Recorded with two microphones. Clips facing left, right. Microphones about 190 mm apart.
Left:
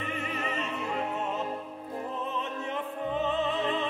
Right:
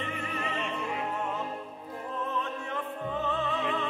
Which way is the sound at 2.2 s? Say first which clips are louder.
Even; 20° left (ahead or behind).